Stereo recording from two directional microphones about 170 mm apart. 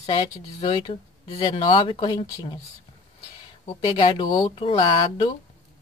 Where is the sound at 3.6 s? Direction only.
25° left (ahead or behind).